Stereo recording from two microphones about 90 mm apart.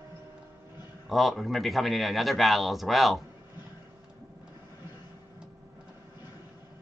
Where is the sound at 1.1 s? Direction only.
Centre (ahead or behind).